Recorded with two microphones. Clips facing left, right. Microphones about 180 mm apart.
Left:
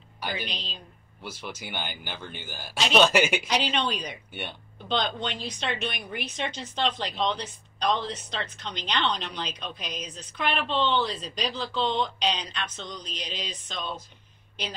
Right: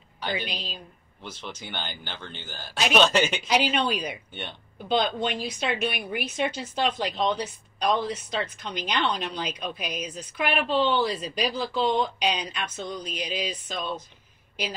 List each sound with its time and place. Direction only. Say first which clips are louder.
0.5 s a woman's voice: right 3 dB; 10° right (ahead or behind)
1.2 s speech: left 1 dB; 10° left (ahead or behind)
3.4 s a woman's voice: right 3 dB; 10° right (ahead or behind)